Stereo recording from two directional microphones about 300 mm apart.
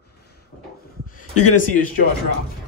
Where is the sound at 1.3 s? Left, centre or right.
Left.